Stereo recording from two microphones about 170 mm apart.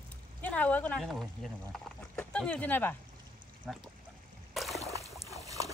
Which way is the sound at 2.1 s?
5° left (ahead or behind).